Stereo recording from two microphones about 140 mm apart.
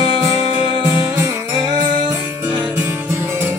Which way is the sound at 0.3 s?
25° right (ahead or behind).